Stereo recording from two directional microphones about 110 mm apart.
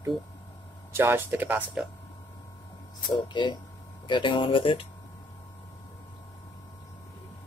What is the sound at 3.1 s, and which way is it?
Speech, 45° left (ahead or behind).